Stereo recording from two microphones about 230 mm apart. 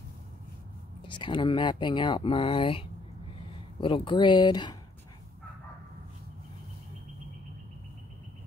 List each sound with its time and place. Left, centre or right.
1.0 s speech: left